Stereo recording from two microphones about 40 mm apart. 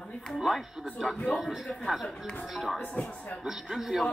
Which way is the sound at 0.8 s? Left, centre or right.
Centre.